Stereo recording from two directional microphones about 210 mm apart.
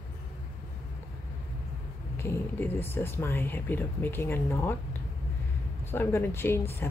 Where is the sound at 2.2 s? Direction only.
10° left (ahead or behind).